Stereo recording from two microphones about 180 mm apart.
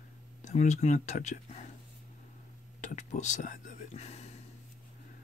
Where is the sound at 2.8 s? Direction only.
40° left (ahead or behind).